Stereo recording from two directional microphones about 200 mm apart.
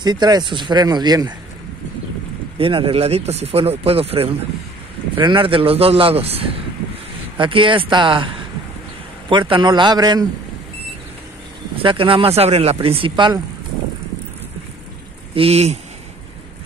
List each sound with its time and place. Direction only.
0.0 s speech: 20° right (ahead or behind)
2.6 s speech: 25° right (ahead or behind)
11.7 s speech: 25° right (ahead or behind)
15.3 s speech: 30° right (ahead or behind)